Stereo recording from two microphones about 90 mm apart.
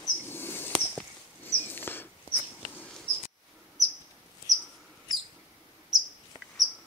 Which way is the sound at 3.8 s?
Centre (ahead or behind).